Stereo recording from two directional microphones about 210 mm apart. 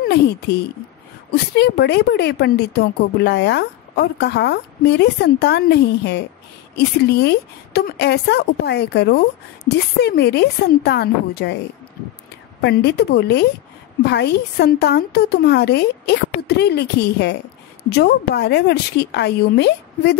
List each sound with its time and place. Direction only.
1.3 s speech: 50° left (ahead or behind)
12.6 s speech: 50° left (ahead or behind)